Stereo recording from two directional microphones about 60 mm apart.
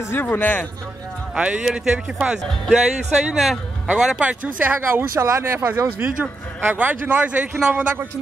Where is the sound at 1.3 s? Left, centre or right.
Centre.